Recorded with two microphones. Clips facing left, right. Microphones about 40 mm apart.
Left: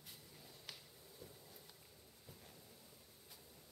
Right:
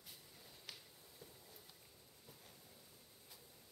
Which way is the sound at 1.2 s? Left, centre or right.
Centre.